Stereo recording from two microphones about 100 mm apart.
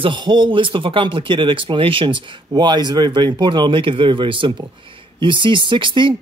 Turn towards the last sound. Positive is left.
turn(degrees=-55)  # may be behind; listen again after turning